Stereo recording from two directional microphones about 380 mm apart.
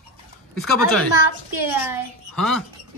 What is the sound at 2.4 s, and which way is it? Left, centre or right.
Speech, centre.